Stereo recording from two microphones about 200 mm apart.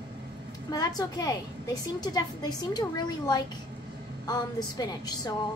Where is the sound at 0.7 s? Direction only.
20° left (ahead or behind).